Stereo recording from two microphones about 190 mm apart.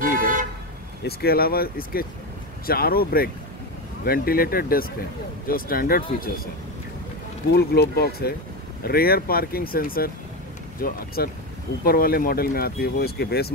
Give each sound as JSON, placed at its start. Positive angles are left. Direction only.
{"t": 0.0, "sound": "toot", "side_deg": -45}
{"t": 1.0, "sound": "speech", "side_deg": 55}
{"t": 7.5, "sound": "speech", "side_deg": 55}